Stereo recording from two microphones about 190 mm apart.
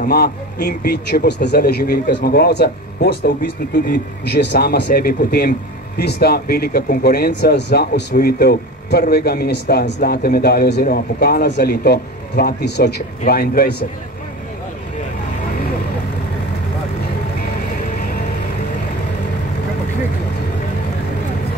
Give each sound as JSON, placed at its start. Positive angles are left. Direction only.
{"t": 0.0, "sound": "a man's voice", "side_deg": 55}
{"t": 17.9, "sound": "music", "side_deg": 50}